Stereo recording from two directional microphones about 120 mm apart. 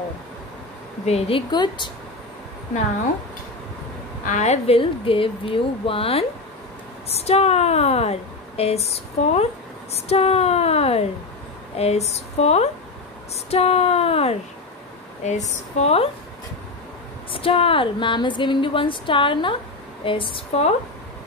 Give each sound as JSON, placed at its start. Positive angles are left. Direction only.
{"t": 1.0, "sound": "a woman's voice", "side_deg": 60}
{"t": 1.5, "sound": "speech", "side_deg": 40}
{"t": 4.3, "sound": "a woman's voice", "side_deg": 70}
{"t": 15.2, "sound": "speech", "side_deg": 75}
{"t": 17.3, "sound": "a woman's voice", "side_deg": 50}